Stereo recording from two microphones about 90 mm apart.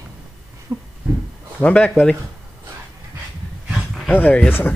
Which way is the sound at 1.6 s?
15° left (ahead or behind).